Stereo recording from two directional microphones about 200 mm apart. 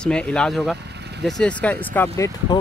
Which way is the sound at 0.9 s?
55° right (ahead or behind).